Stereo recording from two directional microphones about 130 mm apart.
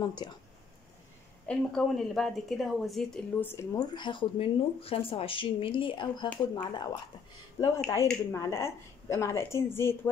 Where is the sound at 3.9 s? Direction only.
40° left (ahead or behind).